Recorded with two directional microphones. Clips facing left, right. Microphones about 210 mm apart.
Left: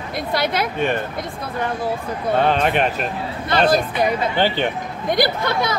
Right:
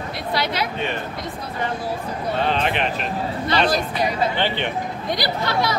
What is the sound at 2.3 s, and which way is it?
Speech, 50° left (ahead or behind).